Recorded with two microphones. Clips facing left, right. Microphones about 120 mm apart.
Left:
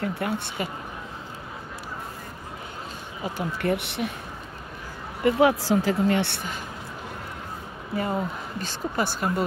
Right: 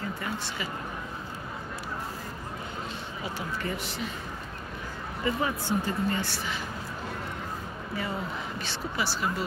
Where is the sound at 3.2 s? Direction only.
55° left (ahead or behind).